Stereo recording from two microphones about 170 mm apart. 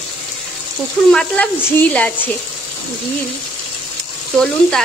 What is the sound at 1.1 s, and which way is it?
Speech, 5° left (ahead or behind).